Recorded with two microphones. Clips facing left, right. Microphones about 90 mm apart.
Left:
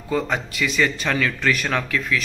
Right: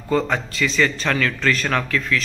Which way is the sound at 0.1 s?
15° left (ahead or behind).